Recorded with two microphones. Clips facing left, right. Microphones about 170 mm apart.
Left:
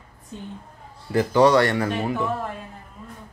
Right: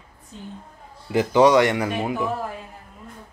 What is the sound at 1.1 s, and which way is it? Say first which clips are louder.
A man's voice: right 1 dB; 15° right (ahead or behind).